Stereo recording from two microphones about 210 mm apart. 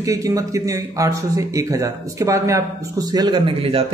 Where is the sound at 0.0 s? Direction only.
15° right (ahead or behind).